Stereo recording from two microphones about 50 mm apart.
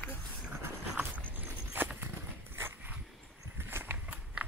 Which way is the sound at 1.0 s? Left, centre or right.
Right.